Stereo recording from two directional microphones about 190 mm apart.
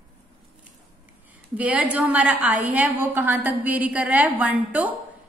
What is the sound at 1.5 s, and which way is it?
A woman's voice, 5° right (ahead or behind).